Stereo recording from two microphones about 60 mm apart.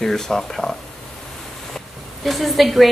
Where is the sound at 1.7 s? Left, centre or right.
Centre.